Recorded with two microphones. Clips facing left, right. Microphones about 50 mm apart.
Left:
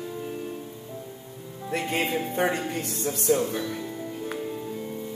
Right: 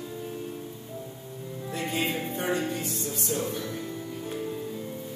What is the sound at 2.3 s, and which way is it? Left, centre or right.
Speech, left.